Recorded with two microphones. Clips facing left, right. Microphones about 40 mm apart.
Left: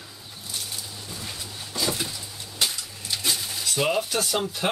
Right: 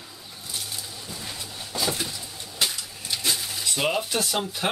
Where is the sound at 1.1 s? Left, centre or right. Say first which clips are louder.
Even; centre.